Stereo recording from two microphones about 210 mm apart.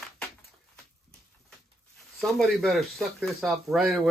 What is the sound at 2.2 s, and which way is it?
Speech, centre (ahead or behind).